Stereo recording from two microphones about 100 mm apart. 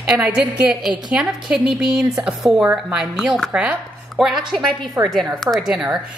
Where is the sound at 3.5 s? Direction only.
15° right (ahead or behind).